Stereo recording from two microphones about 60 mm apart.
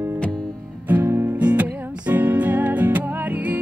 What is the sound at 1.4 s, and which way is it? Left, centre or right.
Music, right.